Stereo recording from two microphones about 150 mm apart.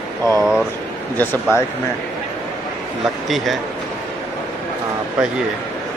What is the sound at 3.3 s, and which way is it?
Speech, centre (ahead or behind).